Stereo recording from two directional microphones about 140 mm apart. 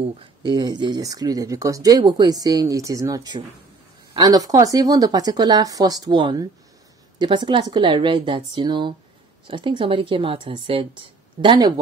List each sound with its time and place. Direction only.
0.4 s speech: 30° right (ahead or behind)